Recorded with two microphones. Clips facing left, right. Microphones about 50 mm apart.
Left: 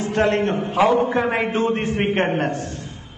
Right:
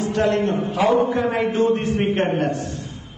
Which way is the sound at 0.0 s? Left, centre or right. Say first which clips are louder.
Even; left.